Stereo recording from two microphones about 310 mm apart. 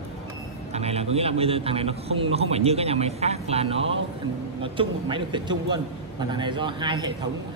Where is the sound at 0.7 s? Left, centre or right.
Centre.